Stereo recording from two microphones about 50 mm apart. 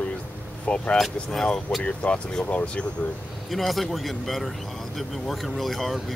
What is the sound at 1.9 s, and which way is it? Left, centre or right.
Speech, left.